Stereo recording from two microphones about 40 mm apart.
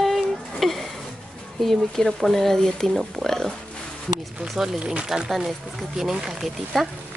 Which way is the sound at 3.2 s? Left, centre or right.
Centre.